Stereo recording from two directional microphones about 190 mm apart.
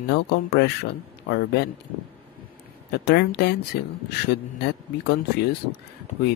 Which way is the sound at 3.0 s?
60° left (ahead or behind).